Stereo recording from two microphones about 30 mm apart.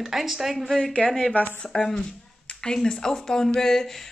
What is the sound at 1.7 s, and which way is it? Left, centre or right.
Speech, centre.